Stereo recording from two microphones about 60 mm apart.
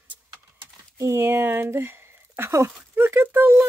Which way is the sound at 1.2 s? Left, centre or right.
Right.